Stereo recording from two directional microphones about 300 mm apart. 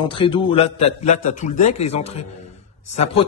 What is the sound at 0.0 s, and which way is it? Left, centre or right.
A man's voice, centre.